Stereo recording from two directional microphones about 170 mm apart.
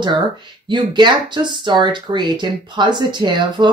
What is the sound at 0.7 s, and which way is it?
Speech, 25° right (ahead or behind).